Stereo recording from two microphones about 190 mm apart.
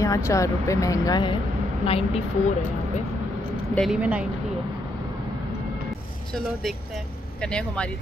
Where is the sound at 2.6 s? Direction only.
40° left (ahead or behind).